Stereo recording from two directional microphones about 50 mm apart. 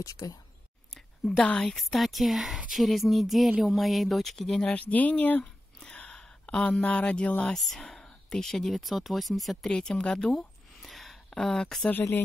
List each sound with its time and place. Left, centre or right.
0.2 s speech: left
0.9 s a sound: centre
1.4 s speech: left
1.7 s speech: centre
4.7 s speech: left
5.4 s a sound: centre
7.5 s speech: centre
9.7 s speech: centre
10.8 s a sound: centre
11.2 s speech: centre